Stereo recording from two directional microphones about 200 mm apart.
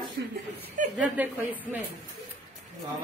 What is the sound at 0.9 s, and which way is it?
Speech, 10° right (ahead or behind).